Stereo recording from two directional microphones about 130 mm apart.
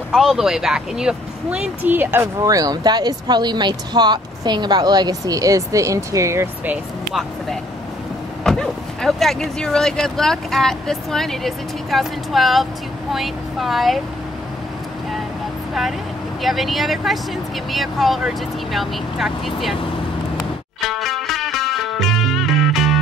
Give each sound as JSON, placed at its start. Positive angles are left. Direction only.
{"t": 0.1, "sound": "speech", "side_deg": 0}
{"t": 2.4, "sound": "speech", "side_deg": -25}
{"t": 7.1, "sound": "speech", "side_deg": 0}
{"t": 16.3, "sound": "speech", "side_deg": 0}
{"t": 20.8, "sound": "music", "side_deg": 0}